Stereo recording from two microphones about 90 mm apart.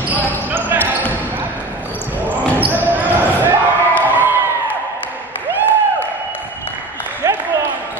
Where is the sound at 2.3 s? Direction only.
20° right (ahead or behind).